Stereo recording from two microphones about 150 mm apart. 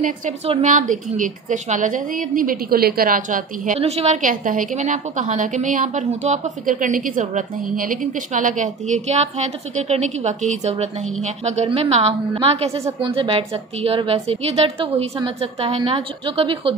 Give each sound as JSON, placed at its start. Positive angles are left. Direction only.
{"t": 0.7, "sound": "a woman's voice", "side_deg": -60}